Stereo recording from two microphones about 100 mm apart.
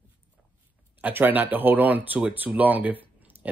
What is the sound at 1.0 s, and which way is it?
Speech, 20° right (ahead or behind).